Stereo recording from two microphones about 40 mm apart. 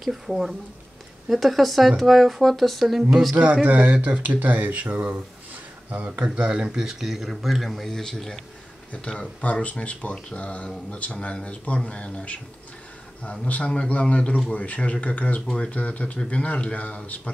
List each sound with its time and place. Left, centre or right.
0.0 s speech: centre
3.6 s speech: right
6.4 s speech: right
6.8 s speech: centre
7.8 s speech: centre
9.0 s a man's voice: left
9.4 s a man's voice: left
15.4 s a man's voice: left
15.7 s speech: left